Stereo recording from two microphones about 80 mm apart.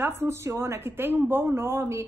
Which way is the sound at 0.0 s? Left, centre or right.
Right.